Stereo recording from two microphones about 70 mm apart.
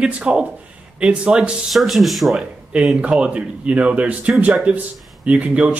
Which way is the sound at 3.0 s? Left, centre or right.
Centre.